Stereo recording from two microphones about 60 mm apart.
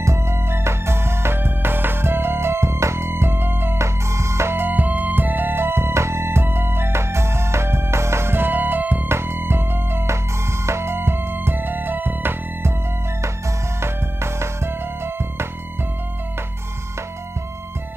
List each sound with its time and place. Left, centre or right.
0.0 s music: right
3.7 s music: right
9.1 s music: right
13.7 s music: right